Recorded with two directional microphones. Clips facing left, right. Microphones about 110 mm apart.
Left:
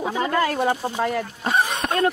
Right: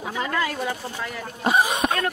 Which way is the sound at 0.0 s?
30° left (ahead or behind).